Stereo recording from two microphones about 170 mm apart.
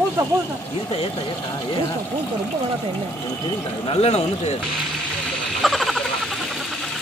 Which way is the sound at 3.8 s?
35° left (ahead or behind).